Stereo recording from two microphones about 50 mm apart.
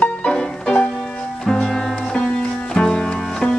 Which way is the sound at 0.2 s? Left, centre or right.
Centre.